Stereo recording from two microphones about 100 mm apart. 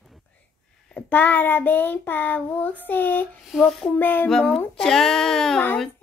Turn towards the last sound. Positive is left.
turn(degrees=5)  # may be behind; listen again after turning